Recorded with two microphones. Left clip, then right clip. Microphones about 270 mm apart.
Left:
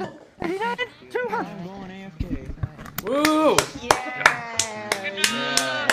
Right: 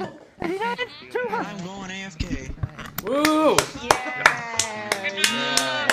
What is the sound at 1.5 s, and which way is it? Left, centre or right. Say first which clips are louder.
Music: right 4 dB; right.